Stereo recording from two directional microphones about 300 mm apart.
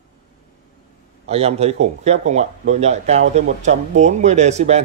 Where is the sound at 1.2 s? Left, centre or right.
Right.